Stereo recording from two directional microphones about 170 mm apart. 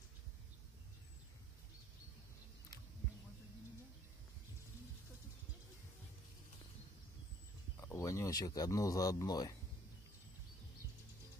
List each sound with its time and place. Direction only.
7.8 s speech: 15° left (ahead or behind)